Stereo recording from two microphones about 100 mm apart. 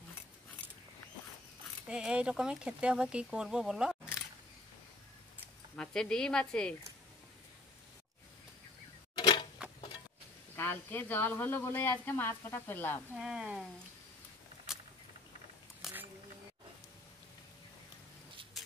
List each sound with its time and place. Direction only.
1.9 s speech: 10° right (ahead or behind)
5.8 s a woman's voice: 10° left (ahead or behind)
9.2 s a sound: 55° left (ahead or behind)
10.5 s speech: 20° left (ahead or behind)
13.1 s speech: 10° right (ahead or behind)
15.8 s a sound: 5° right (ahead or behind)